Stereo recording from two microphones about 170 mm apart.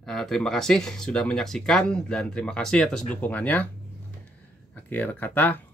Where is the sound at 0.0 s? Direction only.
5° left (ahead or behind).